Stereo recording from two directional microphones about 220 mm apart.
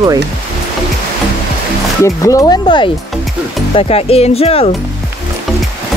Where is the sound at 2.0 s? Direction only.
15° left (ahead or behind).